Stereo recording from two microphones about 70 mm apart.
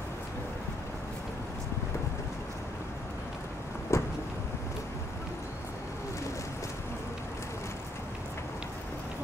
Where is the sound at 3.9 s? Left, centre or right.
Left.